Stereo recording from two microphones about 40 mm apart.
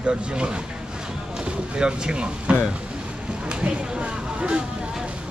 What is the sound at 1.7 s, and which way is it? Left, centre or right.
Speech, right.